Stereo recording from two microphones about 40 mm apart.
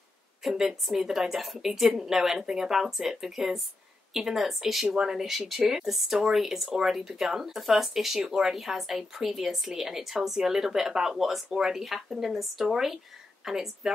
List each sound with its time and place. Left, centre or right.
0.4 s speech: centre
4.8 s speech: centre